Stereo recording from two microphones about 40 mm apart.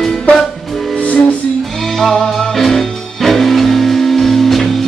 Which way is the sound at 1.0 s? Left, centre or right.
Left.